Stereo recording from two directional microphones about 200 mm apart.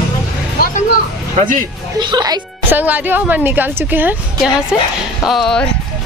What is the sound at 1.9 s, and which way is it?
A woman's voice, 20° right (ahead or behind).